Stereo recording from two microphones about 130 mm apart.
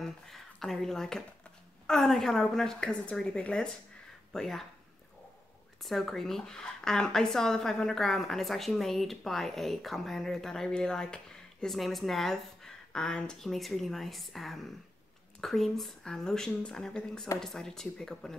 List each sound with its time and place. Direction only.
0.0 s speech: centre (ahead or behind)
5.8 s speech: centre (ahead or behind)